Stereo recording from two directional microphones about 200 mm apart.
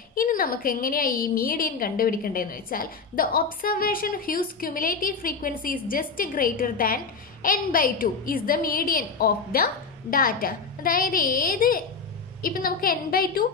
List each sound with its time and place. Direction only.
0.1 s a woman's voice: 45° left (ahead or behind)